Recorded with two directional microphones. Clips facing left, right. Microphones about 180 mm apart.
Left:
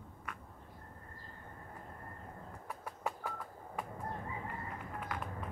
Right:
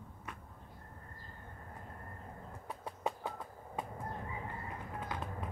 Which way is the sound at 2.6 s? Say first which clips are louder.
Right 2 dB; 25° right (ahead or behind).